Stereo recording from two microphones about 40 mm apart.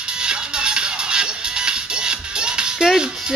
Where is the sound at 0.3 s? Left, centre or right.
Right.